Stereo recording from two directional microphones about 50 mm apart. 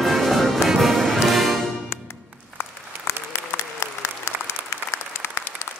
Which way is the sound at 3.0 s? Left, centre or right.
Left.